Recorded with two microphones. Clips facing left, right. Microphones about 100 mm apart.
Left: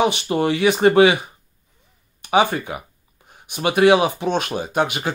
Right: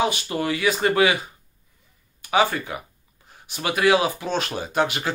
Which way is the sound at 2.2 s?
20° left (ahead or behind).